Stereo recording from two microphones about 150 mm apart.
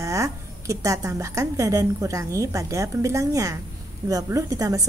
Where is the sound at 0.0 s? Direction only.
20° right (ahead or behind).